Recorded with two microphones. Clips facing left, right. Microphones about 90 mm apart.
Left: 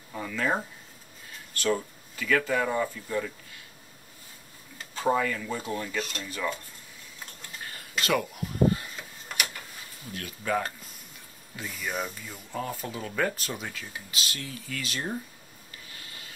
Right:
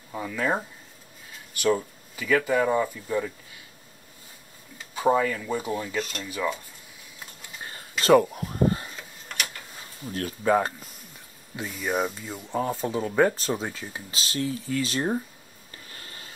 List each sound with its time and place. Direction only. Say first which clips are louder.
0.1 s speech: right 2 dB; 15° right (ahead or behind)
1.5 s speech: right 4 dB; 10° right (ahead or behind)
4.9 s speech: right 4 dB; 15° right (ahead or behind)
5.9 s speech: right 3 dB; centre (ahead or behind)
6.2 s speech: right 3 dB; 10° right (ahead or behind)
8.0 s speech: right 9 dB; 35° right (ahead or behind)
8.9 s a sound: even; 5° left (ahead or behind)
10.0 s speech: right 8 dB; 35° right (ahead or behind)
15.9 s a sound: right 3 dB; 40° right (ahead or behind)